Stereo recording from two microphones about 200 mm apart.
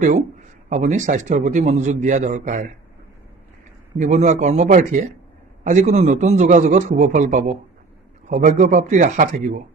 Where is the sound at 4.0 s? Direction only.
35° right (ahead or behind).